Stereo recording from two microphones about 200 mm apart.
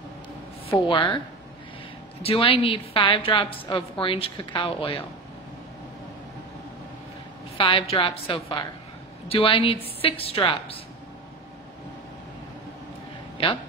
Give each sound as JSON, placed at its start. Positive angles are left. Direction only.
{"t": 0.7, "sound": "a woman's voice", "side_deg": 25}
{"t": 2.2, "sound": "a woman's voice", "side_deg": 30}
{"t": 7.5, "sound": "a woman's voice", "side_deg": 30}